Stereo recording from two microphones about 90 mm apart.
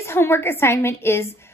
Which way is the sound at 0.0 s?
25° left (ahead or behind).